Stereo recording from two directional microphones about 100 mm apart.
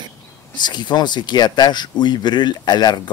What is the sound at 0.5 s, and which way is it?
Speech, 50° left (ahead or behind).